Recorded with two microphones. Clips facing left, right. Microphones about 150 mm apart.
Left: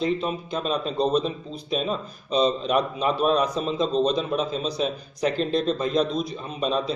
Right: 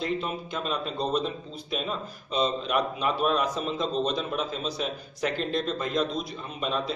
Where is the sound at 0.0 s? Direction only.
20° left (ahead or behind).